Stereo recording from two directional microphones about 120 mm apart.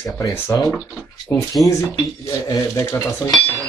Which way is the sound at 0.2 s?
25° left (ahead or behind).